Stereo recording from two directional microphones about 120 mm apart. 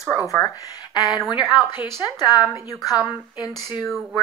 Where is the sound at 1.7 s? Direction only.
35° left (ahead or behind).